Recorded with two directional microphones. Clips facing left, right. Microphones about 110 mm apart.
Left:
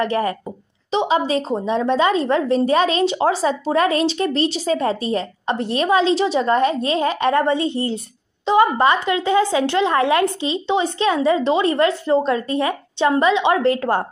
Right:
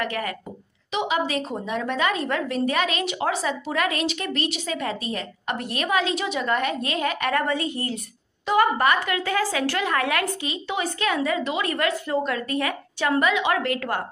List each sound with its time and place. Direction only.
0.0 s a woman's voice: 30° left (ahead or behind)